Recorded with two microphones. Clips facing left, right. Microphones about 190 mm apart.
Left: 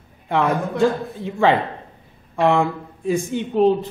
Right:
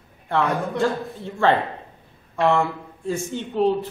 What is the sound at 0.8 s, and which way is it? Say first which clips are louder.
A man's voice: left 4 dB; 15° left (ahead or behind).